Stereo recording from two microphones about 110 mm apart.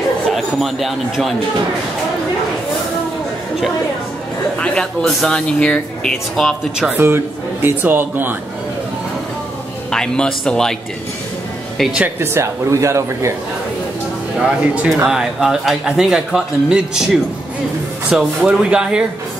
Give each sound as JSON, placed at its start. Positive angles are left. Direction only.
{"t": 0.3, "sound": "speech", "side_deg": 0}
{"t": 4.6, "sound": "speech", "side_deg": 5}
{"t": 6.8, "sound": "speech", "side_deg": -20}
{"t": 9.8, "sound": "a man's voice", "side_deg": 5}
{"t": 11.8, "sound": "speech", "side_deg": -10}
{"t": 12.2, "sound": "speech", "side_deg": -25}
{"t": 14.4, "sound": "a man's voice", "side_deg": -10}